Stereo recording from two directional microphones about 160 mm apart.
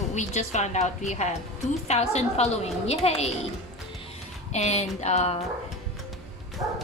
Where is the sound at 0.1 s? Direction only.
45° left (ahead or behind).